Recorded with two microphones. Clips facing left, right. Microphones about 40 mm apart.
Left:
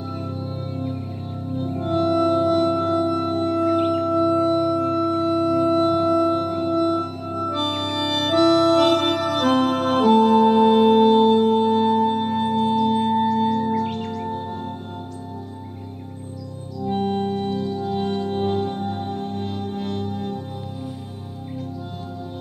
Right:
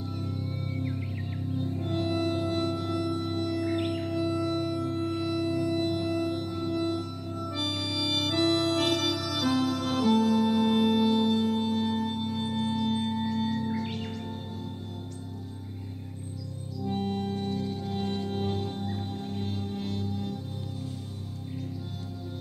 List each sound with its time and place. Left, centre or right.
1.6 s music: left
5.3 s music: left
16.8 s organ: left